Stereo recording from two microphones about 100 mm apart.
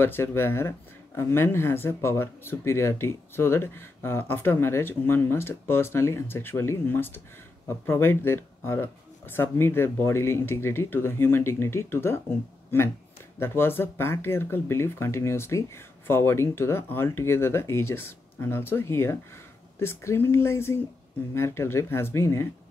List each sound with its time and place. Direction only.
0.0 s speech: 25° left (ahead or behind)
13.4 s speech: 20° left (ahead or behind)